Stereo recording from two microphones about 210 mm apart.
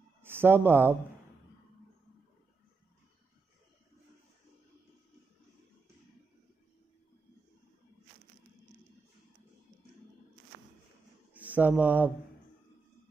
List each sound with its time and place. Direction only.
0.2 s speech: 10° right (ahead or behind)
11.3 s speech: 5° right (ahead or behind)